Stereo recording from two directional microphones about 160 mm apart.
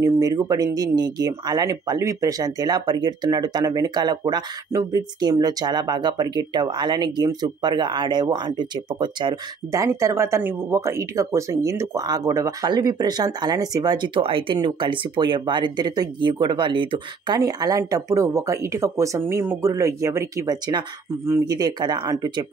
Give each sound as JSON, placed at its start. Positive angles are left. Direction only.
{"t": 0.0, "sound": "speech", "side_deg": -25}